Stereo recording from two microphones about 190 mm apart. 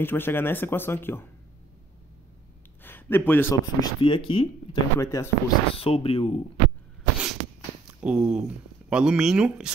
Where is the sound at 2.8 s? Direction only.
10° left (ahead or behind); by 4.4 s 30° left (ahead or behind).